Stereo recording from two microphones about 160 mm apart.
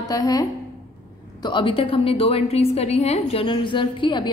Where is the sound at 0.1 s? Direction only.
20° left (ahead or behind).